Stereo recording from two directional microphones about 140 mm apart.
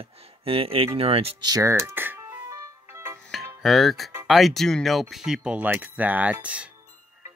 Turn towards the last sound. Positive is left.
turn(degrees=-10)  # may be behind; listen again after turning